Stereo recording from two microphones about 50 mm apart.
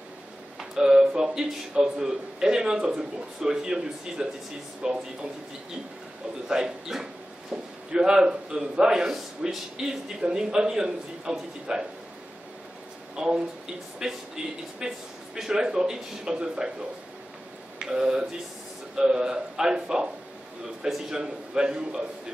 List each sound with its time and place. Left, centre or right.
0.6 s a man's voice: centre
6.4 s a man's voice: centre
13.1 s a man's voice: centre
17.7 s a man's voice: centre